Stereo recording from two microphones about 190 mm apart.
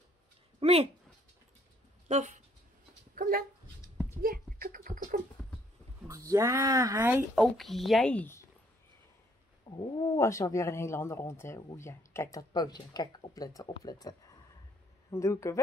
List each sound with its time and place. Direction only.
0.6 s a sound: 30° right (ahead or behind)
2.0 s speech: 40° right (ahead or behind)
3.2 s dog: 50° right (ahead or behind)
4.2 s a sound: 50° right (ahead or behind)
6.0 s speech: 15° right (ahead or behind); by 8.5 s 10° left (ahead or behind)
9.7 s speech: 15° left (ahead or behind)